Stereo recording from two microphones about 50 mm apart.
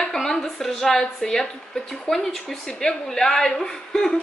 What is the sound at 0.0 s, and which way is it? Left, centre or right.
A woman's voice, centre.